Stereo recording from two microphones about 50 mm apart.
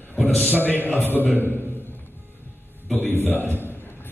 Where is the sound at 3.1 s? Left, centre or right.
Left.